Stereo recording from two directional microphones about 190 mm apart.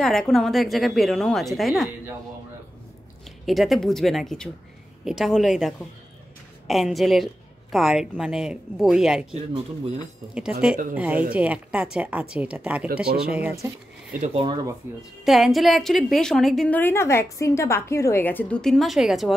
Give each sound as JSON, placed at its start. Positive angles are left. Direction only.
{"t": 0.0, "sound": "a woman's voice", "side_deg": 0}
{"t": 3.4, "sound": "a woman's voice", "side_deg": 0}
{"t": 9.3, "sound": "speech", "side_deg": -30}
{"t": 10.3, "sound": "a woman's voice", "side_deg": -5}
{"t": 12.8, "sound": "speech", "side_deg": -55}
{"t": 14.2, "sound": "speech", "side_deg": -30}
{"t": 15.2, "sound": "a woman's voice", "side_deg": 0}